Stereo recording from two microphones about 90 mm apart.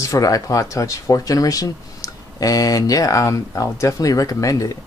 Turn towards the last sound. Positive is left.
turn(degrees=40)  # may be behind; listen again after turning